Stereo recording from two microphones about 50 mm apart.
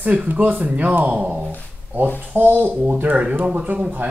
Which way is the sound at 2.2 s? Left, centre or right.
Right.